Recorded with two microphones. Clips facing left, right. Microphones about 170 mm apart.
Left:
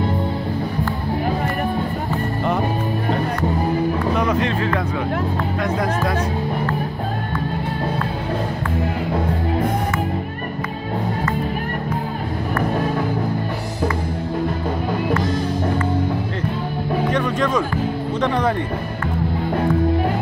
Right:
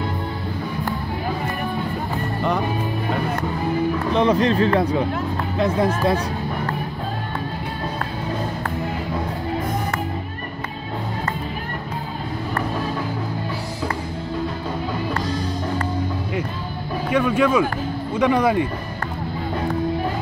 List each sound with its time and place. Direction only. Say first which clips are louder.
4.1 s speech: right 2 dB; 30° right (ahead or behind)
17.1 s music: right 5 dB; 10° right (ahead or behind)
18.2 s speech: right 3 dB; 10° right (ahead or behind)